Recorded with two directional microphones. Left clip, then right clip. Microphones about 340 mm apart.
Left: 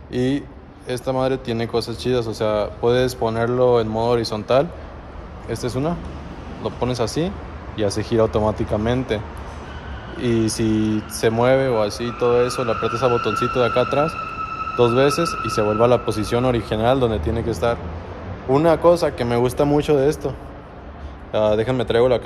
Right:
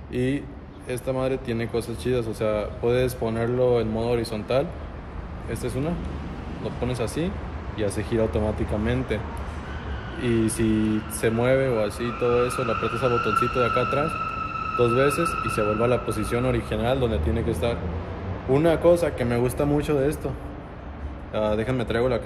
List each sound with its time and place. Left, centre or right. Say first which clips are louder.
0.1 s a man's voice: left 4 dB; centre
6.8 s speech: left 6 dB; centre
10.2 s speech: left 3 dB; centre
21.3 s speech: left 6 dB; centre